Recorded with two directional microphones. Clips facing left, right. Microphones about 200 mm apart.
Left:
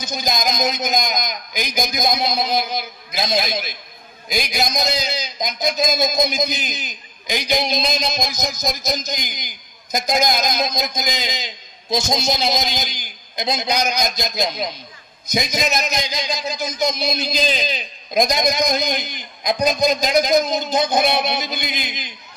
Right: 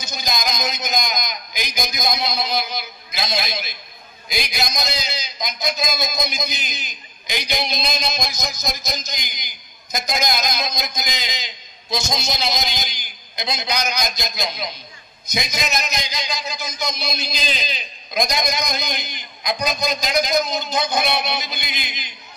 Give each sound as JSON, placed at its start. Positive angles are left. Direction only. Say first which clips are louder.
{"t": 0.0, "sound": "a man's voice", "louder": "left 4 dB", "side_deg": 50}